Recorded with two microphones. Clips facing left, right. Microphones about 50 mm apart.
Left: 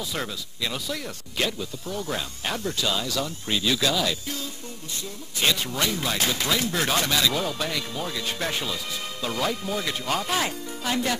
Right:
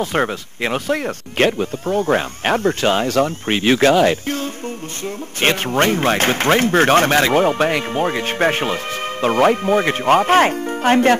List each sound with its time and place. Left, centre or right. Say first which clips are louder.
0.0 s speech: right 12 dB; right